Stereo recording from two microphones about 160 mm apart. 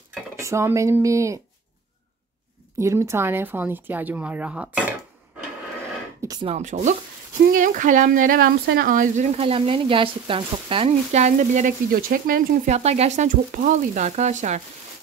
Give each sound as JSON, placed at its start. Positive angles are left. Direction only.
{"t": 0.4, "sound": "speech", "side_deg": -20}
{"t": 2.8, "sound": "speech", "side_deg": -15}
{"t": 6.4, "sound": "speech", "side_deg": -45}
{"t": 9.5, "sound": "speech", "side_deg": -35}
{"t": 12.6, "sound": "speech", "side_deg": -45}